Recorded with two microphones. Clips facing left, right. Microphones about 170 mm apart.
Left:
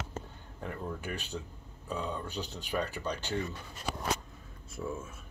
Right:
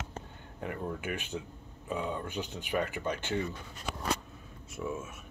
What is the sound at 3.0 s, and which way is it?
Mantra, 20° right (ahead or behind).